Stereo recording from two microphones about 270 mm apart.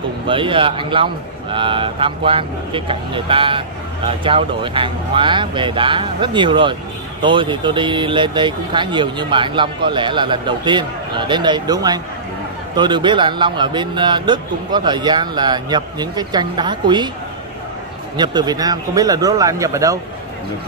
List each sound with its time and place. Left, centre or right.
0.3 s speech: centre
18.1 s speech: centre